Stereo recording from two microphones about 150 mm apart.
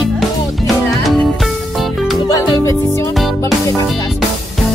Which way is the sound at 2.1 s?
25° left (ahead or behind).